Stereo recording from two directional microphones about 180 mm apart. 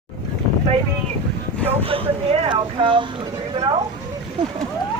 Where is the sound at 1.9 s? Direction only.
30° right (ahead or behind).